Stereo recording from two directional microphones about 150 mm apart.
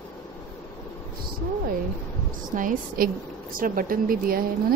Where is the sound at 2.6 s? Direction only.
70° right (ahead or behind).